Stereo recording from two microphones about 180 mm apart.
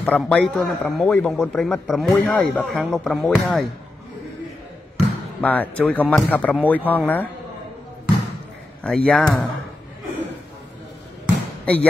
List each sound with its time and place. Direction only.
0.0 s speech: 5° left (ahead or behind)
4.9 s speech: 10° left (ahead or behind)
8.8 s speech: 5° left (ahead or behind)
11.6 s speech: 5° left (ahead or behind)